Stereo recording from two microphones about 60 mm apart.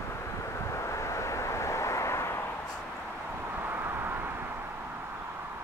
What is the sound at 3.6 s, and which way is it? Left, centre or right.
Vehicle, right.